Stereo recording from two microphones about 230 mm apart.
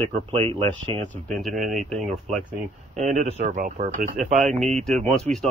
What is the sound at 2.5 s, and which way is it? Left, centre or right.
Speech, right.